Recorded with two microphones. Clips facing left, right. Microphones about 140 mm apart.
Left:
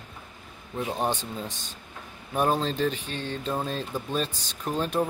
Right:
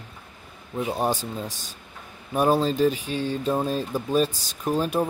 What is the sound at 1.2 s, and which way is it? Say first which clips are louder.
Speech: right 3 dB; 40° right (ahead or behind).